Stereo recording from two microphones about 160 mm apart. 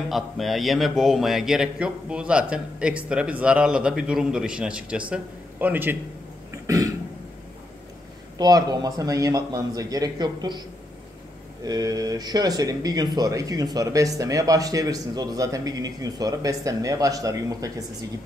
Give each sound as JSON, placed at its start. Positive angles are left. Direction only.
{"t": 0.1, "sound": "speech", "side_deg": 0}
{"t": 8.4, "sound": "speech", "side_deg": -25}
{"t": 11.6, "sound": "speech", "side_deg": -25}